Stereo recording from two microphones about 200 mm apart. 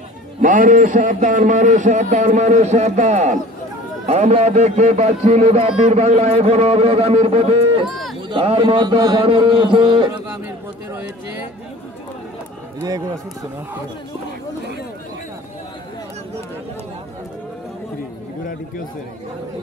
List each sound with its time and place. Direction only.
0.4 s a man's voice: 40° right (ahead or behind)
7.9 s a sound: centre (ahead or behind)
8.3 s a man's voice: 25° right (ahead or behind)
10.9 s speech: 10° right (ahead or behind)